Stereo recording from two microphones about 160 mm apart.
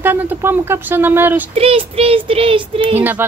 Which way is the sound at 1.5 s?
35° right (ahead or behind).